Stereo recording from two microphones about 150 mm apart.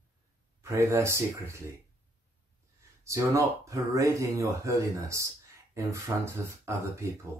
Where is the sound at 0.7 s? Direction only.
20° right (ahead or behind).